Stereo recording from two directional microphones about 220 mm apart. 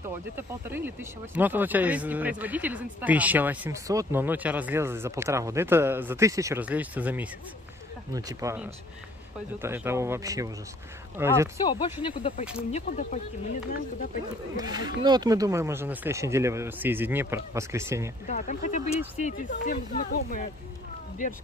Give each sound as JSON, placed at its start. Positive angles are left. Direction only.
{"t": 0.0, "sound": "speech", "side_deg": -10}
{"t": 11.6, "sound": "speech", "side_deg": 20}
{"t": 14.6, "sound": "speech", "side_deg": -20}
{"t": 18.2, "sound": "speech", "side_deg": 35}